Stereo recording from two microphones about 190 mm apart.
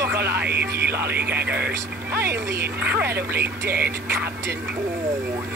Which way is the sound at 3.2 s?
55° right (ahead or behind).